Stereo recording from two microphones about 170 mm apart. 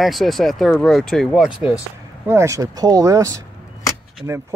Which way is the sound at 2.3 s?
15° right (ahead or behind).